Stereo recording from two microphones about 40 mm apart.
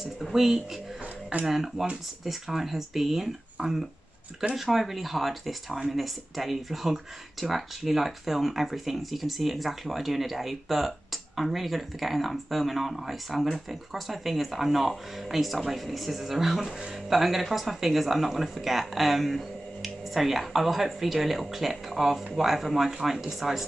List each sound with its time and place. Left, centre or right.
0.0 s speech: centre
3.6 s speech: centre
4.6 s speech: centre